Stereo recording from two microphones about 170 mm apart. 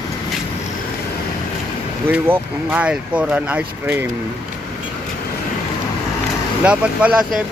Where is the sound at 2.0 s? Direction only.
10° right (ahead or behind).